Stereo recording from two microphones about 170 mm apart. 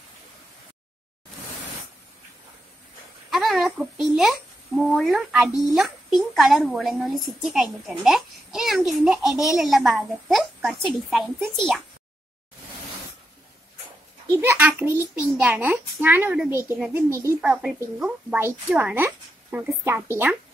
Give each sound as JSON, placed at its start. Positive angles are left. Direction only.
{"t": 3.3, "sound": "a sound", "side_deg": 0}
{"t": 5.8, "sound": "a woman's voice", "side_deg": 0}
{"t": 14.3, "sound": "a woman's voice", "side_deg": -15}